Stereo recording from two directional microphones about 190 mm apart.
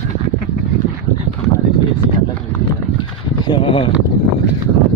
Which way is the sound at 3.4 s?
25° left (ahead or behind).